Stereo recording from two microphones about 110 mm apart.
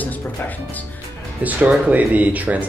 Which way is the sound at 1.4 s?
15° right (ahead or behind).